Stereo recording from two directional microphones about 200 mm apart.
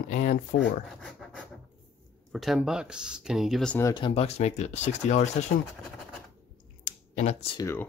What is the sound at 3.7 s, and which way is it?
Speech, 20° left (ahead or behind).